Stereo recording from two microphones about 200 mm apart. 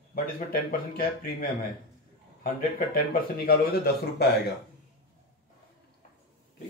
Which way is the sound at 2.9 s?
50° left (ahead or behind).